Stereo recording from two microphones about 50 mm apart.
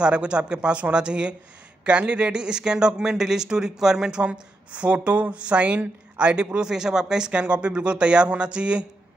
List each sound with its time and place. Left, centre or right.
0.0 s speech: right